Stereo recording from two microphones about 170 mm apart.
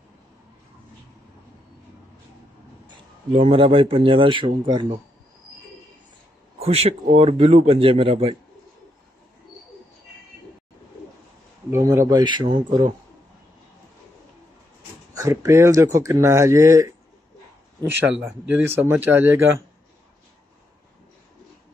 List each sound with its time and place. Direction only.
3.3 s speech: 35° right (ahead or behind)
6.6 s speech: 35° right (ahead or behind)
11.7 s speech: 20° right (ahead or behind)
15.1 s speech: 20° right (ahead or behind)
17.8 s speech: 5° right (ahead or behind)